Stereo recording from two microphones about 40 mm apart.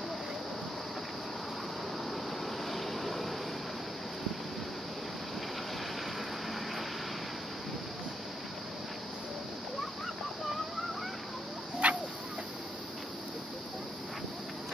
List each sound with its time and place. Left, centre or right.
2.7 s vehicle: centre
11.8 s chicken: right